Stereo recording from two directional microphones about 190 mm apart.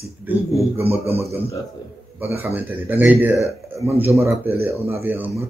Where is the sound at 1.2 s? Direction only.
15° right (ahead or behind).